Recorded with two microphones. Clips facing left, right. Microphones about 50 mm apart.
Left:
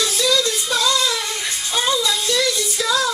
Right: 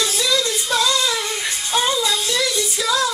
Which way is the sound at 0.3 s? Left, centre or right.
Centre.